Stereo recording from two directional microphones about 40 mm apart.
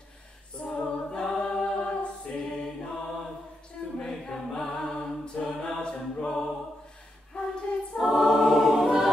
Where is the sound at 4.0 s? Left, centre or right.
Centre.